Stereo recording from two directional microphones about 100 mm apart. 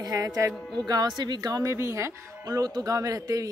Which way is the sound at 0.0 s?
40° right (ahead or behind).